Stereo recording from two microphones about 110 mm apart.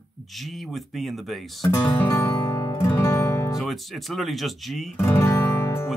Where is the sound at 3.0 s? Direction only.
30° left (ahead or behind).